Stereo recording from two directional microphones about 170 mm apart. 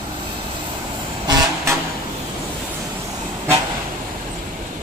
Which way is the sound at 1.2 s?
20° right (ahead or behind).